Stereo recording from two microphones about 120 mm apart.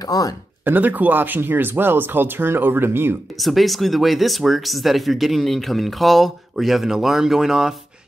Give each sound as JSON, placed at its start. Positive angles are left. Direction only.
{"t": 0.0, "sound": "speech", "side_deg": 30}
{"t": 0.7, "sound": "speech", "side_deg": -15}
{"t": 3.3, "sound": "speech", "side_deg": 0}